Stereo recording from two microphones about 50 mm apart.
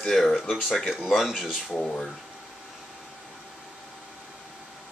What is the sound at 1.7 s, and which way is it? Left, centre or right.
Speech, centre.